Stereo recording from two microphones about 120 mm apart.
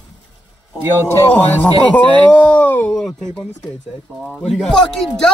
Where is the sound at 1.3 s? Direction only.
10° left (ahead or behind).